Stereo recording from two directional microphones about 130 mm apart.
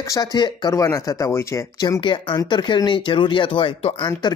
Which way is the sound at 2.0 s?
40° left (ahead or behind).